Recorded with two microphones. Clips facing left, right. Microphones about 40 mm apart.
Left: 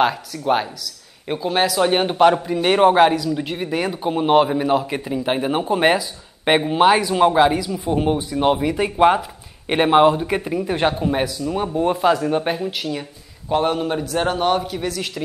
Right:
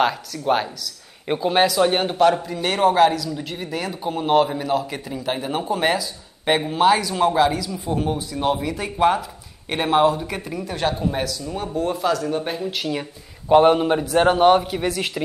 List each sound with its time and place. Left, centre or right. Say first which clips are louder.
0.0 s speech: left 2 dB; centre
1.2 s speech: right 1 dB; centre
1.9 s a man's voice: left 2 dB; centre
12.8 s speech: right 3 dB; centre
13.5 s a man's voice: right 5 dB; centre